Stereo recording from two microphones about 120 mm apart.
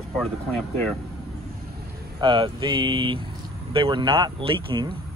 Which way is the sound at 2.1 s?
40° right (ahead or behind).